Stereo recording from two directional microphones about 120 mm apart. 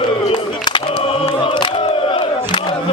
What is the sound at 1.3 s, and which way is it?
Battle cry, 40° left (ahead or behind).